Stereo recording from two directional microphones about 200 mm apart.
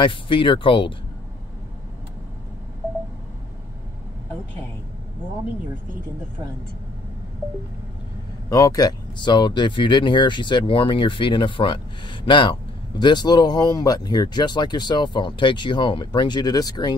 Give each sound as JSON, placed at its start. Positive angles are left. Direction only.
{"t": 0.0, "sound": "speech", "side_deg": 25}
{"t": 8.5, "sound": "speech", "side_deg": 15}